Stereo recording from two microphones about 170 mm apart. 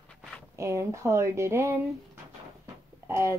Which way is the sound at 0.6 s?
15° right (ahead or behind).